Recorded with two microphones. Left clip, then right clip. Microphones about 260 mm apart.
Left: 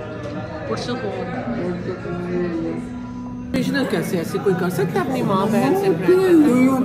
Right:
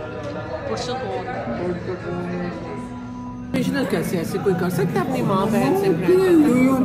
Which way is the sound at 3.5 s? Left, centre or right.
Centre.